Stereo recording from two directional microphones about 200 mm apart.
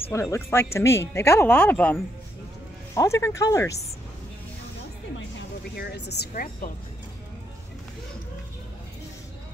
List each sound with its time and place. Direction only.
0.1 s speech: 15° left (ahead or behind)
5.8 s speech: 55° left (ahead or behind)